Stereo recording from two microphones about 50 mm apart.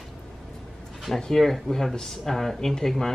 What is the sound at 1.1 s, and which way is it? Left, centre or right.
Speech, centre.